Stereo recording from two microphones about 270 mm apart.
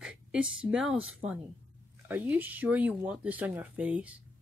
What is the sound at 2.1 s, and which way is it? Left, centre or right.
Speech, centre.